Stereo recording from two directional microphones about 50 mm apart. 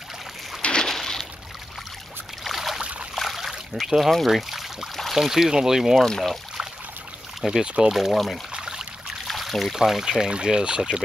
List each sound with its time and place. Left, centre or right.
0.6 s a sound: left
0.8 s a sound: centre
2.4 s boat: centre
2.8 s trickle: right
3.2 s a sound: centre
3.8 s speech: centre
6.0 s speech: centre
7.6 s speech: right
7.9 s speech: centre
8.5 s trickle: centre
9.3 s trickle: centre
9.8 s speech: centre